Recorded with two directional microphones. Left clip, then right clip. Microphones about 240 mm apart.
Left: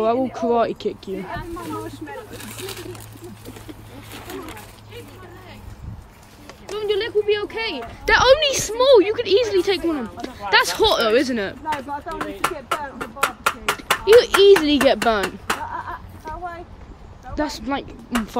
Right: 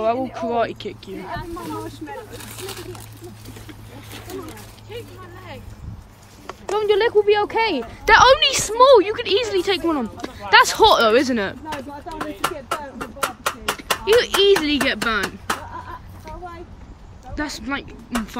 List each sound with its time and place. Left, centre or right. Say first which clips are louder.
0.3 s speech: left 2 dB; centre
1.2 s speech: even; centre
6.7 s speech: right 5 dB; centre
8.1 s a woman's voice: right 2 dB; centre
16.3 s a sound: left 5 dB; centre
17.4 s a woman's voice: left 2 dB; centre